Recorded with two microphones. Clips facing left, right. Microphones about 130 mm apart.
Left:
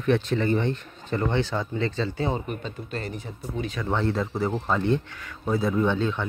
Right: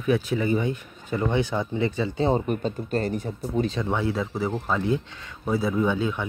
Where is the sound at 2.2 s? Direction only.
40° right (ahead or behind).